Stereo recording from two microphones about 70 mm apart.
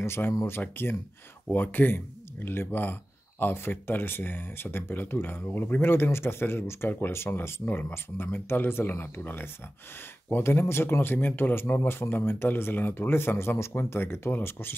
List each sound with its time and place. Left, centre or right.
0.0 s speech: left